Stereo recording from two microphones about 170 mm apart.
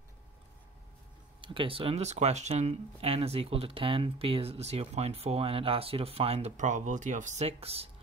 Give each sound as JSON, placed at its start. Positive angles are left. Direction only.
{"t": 1.4, "sound": "speech", "side_deg": -30}